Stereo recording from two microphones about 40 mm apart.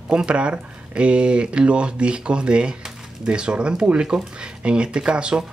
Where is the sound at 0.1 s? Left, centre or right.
Right.